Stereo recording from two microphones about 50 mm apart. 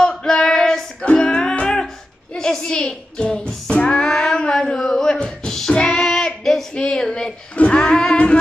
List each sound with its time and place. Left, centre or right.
0.0 s female singing: centre
1.0 s music: centre
5.8 s female singing: centre
6.8 s a sound: centre
7.5 s music: left